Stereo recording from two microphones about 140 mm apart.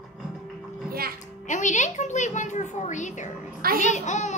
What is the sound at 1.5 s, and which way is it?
A child's voice, 60° left (ahead or behind).